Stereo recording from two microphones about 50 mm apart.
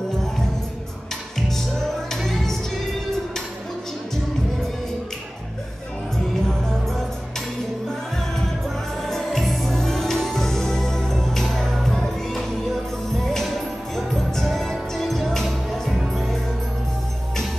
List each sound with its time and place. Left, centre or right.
1.8 s music: centre
9.0 s music: centre